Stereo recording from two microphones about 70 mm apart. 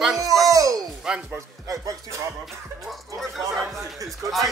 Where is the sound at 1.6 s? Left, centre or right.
Right.